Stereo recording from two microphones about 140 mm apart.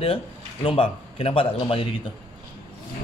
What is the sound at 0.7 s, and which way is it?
Speech, 40° left (ahead or behind).